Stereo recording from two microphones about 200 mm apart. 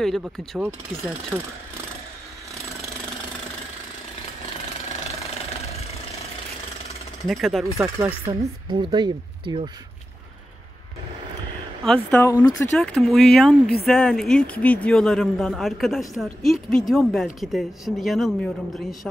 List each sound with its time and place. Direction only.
0.0 s a woman's voice: centre (ahead or behind)
7.2 s a woman's voice: centre (ahead or behind)
7.6 s speech: 15° right (ahead or behind)
8.3 s speech: 25° right (ahead or behind)
11.8 s speech: 5° left (ahead or behind)
12.7 s a woman's voice: centre (ahead or behind)